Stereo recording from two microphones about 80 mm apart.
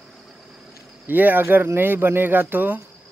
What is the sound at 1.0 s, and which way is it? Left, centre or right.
Speech, right.